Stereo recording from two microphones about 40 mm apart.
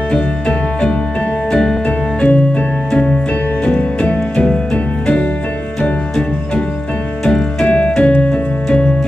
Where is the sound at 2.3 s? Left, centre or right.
Left.